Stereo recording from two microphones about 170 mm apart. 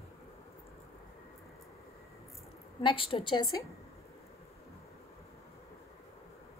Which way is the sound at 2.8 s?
30° left (ahead or behind).